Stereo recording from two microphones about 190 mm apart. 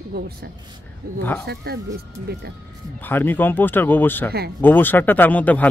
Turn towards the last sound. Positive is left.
turn(degrees=10)  # may be behind; listen again after turning